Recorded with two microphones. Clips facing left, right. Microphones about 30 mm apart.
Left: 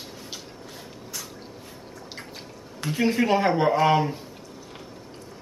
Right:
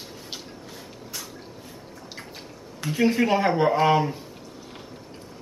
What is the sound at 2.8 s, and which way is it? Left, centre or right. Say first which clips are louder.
Speech: right 1 dB; centre.